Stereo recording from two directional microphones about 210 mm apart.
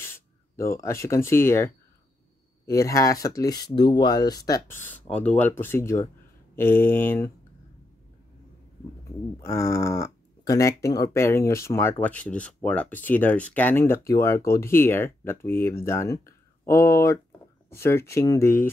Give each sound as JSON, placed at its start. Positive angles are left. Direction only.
{"t": 0.0, "sound": "speech", "side_deg": 10}
{"t": 9.4, "sound": "speech", "side_deg": 15}